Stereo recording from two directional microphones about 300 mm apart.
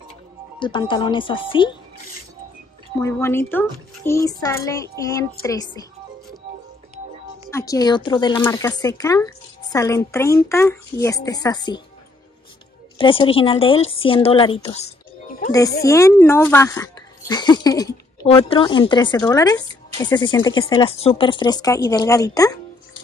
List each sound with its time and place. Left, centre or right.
0.6 s speech: centre
3.0 s speech: centre
7.5 s speech: centre
12.9 s speech: centre
15.8 s speech: centre